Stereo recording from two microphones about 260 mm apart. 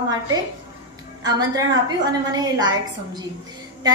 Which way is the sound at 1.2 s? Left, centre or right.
Centre.